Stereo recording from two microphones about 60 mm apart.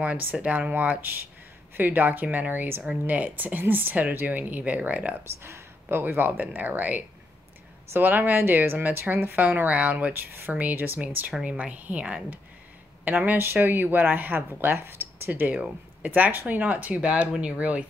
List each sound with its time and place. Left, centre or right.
0.2 s speech: right
5.2 s speech: right